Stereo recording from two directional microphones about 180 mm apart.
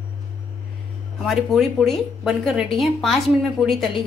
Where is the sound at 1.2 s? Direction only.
Centre (ahead or behind).